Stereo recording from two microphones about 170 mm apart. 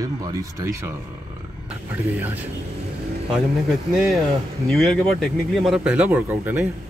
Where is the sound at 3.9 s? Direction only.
Centre (ahead or behind).